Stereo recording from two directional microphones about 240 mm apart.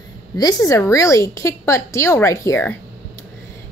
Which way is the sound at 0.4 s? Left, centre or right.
Centre.